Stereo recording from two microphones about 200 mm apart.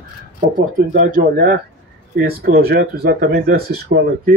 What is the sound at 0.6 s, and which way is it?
Speech, 45° right (ahead or behind).